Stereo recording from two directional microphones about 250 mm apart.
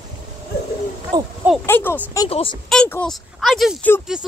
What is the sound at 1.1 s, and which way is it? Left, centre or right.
Speech, centre.